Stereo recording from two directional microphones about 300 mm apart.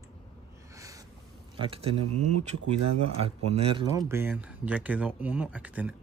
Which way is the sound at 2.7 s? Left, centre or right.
Right.